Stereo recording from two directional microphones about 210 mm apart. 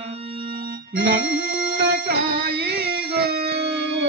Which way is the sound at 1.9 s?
45° right (ahead or behind).